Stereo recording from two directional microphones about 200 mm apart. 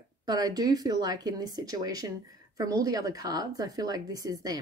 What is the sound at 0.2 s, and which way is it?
Speech, 20° right (ahead or behind).